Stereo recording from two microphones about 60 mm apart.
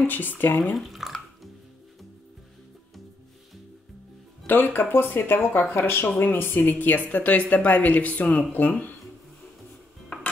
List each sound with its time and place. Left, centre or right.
0.0 s speech: left
0.7 s drip: centre
4.5 s speech: left